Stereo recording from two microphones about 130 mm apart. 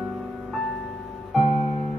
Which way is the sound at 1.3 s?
50° left (ahead or behind).